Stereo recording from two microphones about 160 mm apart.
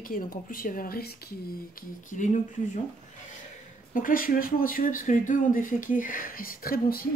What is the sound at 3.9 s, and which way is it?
Speech, 60° left (ahead or behind).